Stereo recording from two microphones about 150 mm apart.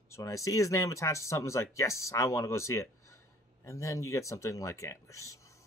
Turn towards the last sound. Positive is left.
turn(degrees=20)  # may be behind; listen again after turning